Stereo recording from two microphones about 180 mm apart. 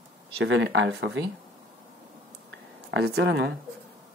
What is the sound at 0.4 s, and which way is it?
Speech, 75° right (ahead or behind).